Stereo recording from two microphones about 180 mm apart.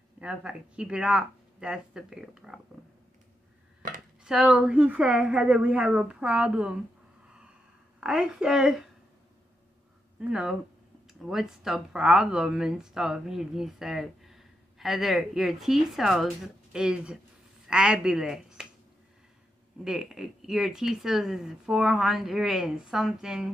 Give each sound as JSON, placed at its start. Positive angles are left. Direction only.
{"t": 0.2, "sound": "speech", "side_deg": -5}
{"t": 4.2, "sound": "speech", "side_deg": -5}
{"t": 8.0, "sound": "speech", "side_deg": -5}
{"t": 10.2, "sound": "speech", "side_deg": -5}
{"t": 19.8, "sound": "speech", "side_deg": -5}